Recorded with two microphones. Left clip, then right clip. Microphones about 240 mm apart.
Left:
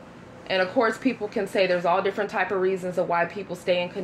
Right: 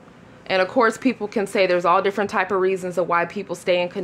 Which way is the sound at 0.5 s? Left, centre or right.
Right.